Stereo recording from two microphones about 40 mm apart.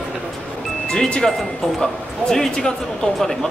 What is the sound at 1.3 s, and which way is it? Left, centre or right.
Speech, centre.